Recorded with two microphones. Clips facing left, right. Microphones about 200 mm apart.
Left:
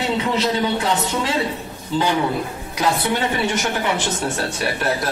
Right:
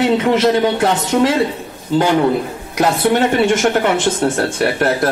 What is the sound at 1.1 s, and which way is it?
Speech, 55° right (ahead or behind).